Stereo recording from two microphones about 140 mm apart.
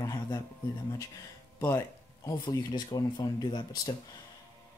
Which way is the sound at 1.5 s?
20° left (ahead or behind).